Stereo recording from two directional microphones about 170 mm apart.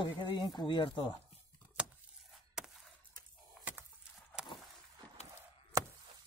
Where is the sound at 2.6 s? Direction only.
5° right (ahead or behind).